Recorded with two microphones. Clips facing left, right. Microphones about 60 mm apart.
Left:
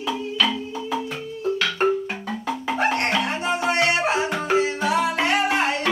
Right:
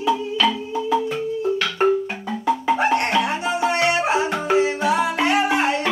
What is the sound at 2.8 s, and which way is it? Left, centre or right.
Music, right.